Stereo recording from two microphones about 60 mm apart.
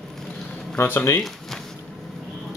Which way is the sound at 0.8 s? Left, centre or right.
Left.